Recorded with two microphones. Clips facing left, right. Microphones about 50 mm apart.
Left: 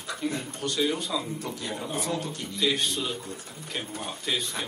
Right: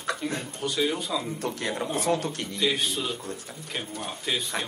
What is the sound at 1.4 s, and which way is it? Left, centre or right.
Speech, right.